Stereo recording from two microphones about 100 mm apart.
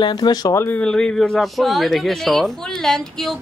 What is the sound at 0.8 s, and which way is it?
Speech, 5° left (ahead or behind).